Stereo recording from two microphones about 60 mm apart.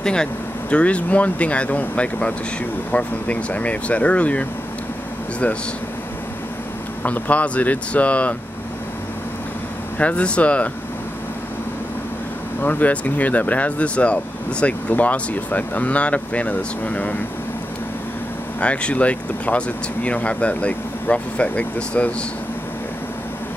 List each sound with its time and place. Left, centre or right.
0.0 s speech: centre
7.0 s speech: left
9.9 s speech: left
12.6 s speech: left
18.6 s speech: centre